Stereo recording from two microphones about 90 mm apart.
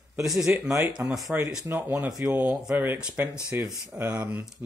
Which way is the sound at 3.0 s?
10° right (ahead or behind).